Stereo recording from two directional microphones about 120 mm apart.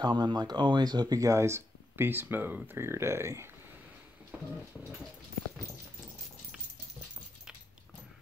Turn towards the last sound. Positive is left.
turn(degrees=-5)  # may be behind; listen again after turning